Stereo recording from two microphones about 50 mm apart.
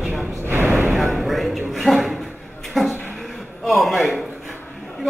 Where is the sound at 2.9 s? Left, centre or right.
Left.